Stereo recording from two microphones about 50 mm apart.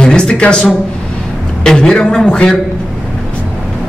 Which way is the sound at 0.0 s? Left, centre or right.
Centre.